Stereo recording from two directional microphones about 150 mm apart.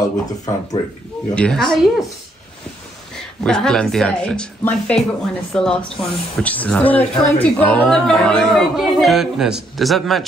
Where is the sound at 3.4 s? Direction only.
5° left (ahead or behind).